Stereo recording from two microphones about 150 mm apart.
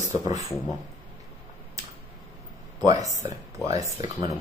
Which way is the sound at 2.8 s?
25° right (ahead or behind).